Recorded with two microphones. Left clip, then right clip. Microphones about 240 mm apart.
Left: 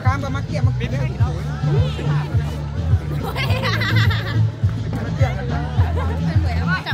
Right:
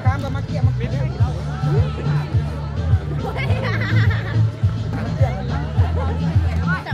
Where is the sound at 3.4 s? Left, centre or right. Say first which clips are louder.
Left 5 dB; left.